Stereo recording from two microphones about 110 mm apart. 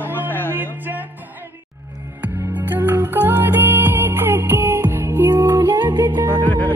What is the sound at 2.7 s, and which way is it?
Music, 20° right (ahead or behind).